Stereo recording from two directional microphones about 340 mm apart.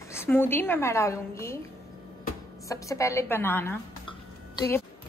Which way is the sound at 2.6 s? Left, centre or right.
Centre.